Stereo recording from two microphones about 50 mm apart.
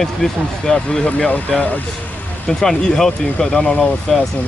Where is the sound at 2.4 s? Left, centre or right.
Centre.